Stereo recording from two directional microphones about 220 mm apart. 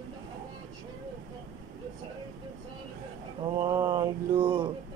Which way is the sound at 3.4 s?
20° right (ahead or behind).